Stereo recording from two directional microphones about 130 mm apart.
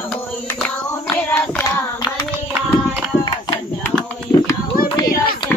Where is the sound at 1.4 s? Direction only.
15° left (ahead or behind).